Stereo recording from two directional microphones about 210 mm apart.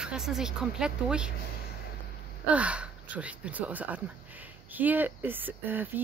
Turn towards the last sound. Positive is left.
turn(degrees=-10)  # may be behind; listen again after turning